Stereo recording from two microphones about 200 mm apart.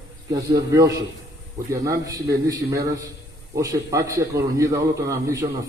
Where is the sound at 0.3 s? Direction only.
20° right (ahead or behind).